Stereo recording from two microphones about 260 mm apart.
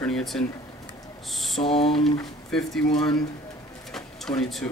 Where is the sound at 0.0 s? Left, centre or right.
Centre.